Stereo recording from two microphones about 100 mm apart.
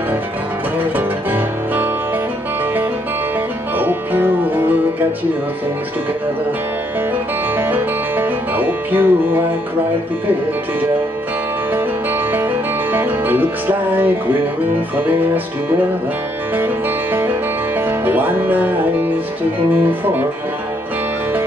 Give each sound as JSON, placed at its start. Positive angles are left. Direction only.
{"t": 0.7, "sound": "music", "side_deg": -20}
{"t": 3.7, "sound": "music", "side_deg": -20}
{"t": 7.5, "sound": "music", "side_deg": -20}
{"t": 12.9, "sound": "music", "side_deg": -20}
{"t": 16.5, "sound": "music", "side_deg": -20}
{"t": 19.8, "sound": "music", "side_deg": -20}